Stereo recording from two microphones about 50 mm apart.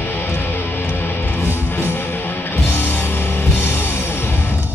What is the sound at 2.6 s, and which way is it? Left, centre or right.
Music, left.